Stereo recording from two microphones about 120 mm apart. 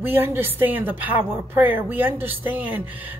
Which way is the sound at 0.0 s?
15° right (ahead or behind).